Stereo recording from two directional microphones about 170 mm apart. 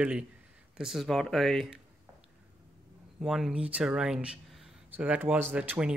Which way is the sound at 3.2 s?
Centre (ahead or behind).